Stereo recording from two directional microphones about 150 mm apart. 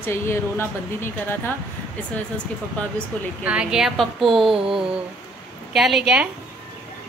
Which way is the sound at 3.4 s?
5° right (ahead or behind).